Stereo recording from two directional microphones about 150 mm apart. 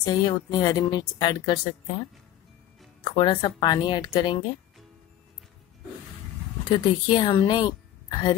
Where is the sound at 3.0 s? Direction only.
35° left (ahead or behind).